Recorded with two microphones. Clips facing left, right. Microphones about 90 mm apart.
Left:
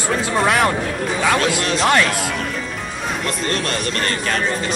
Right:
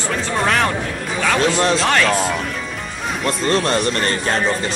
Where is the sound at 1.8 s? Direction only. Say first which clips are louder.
Even; 5° left (ahead or behind).